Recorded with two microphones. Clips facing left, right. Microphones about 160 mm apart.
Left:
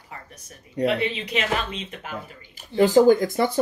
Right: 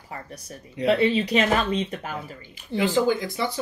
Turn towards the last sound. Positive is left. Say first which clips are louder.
# left 6 dB
turn(degrees=45)  # may be behind; listen again after turning